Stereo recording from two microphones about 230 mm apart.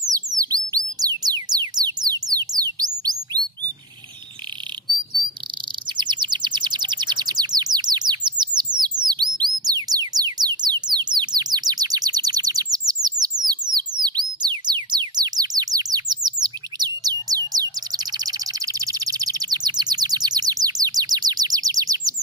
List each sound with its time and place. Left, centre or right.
0.1 s bird: centre
0.7 s music: centre
2.0 s bird: centre
4.9 s chirp: centre
5.9 s bird: centre
8.7 s music: centre
12.7 s bird: centre
13.5 s music: centre